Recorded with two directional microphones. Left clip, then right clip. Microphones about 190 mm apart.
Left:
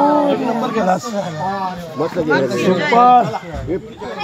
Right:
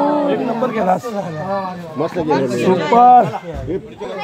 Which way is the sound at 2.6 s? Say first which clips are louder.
Even; 10° right (ahead or behind).